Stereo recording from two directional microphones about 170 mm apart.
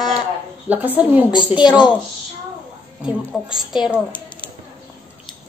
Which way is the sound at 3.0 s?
5° right (ahead or behind).